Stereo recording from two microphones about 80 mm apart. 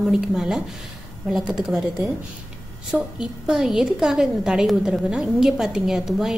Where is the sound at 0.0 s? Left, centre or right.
Centre.